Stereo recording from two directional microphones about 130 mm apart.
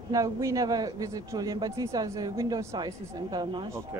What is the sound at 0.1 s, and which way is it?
A man's voice, 25° right (ahead or behind).